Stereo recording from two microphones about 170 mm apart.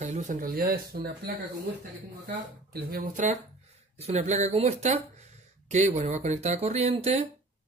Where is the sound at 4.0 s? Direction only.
40° right (ahead or behind).